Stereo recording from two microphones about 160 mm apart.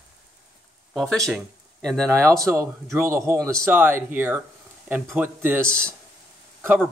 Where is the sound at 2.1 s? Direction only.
15° right (ahead or behind).